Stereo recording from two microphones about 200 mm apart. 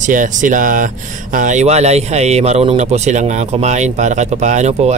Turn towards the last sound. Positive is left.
turn(degrees=-35)  # may be behind; listen again after turning